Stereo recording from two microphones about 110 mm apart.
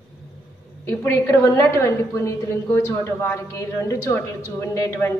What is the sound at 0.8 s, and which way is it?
A woman's voice, 25° left (ahead or behind).